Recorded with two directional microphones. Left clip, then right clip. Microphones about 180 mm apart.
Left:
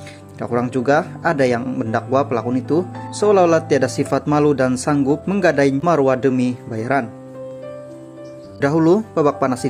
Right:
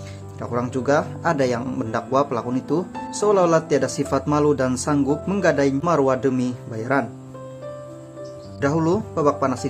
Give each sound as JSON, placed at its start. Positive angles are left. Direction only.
{"t": 0.4, "sound": "speech", "side_deg": 20}
{"t": 8.5, "sound": "speech", "side_deg": 25}